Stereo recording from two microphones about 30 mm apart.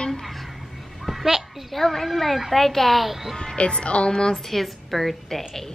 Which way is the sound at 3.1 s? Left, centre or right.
Centre.